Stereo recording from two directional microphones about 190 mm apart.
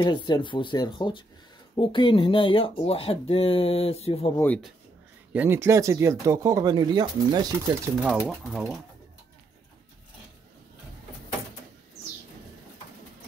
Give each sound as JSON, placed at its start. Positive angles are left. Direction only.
{"t": 0.0, "sound": "speech", "side_deg": 25}
{"t": 5.3, "sound": "speech", "side_deg": -10}
{"t": 8.3, "sound": "speech", "side_deg": 0}